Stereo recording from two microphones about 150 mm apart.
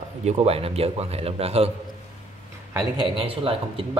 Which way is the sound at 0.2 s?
45° right (ahead or behind).